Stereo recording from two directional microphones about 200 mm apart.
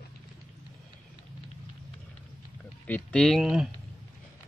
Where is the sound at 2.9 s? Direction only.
5° left (ahead or behind).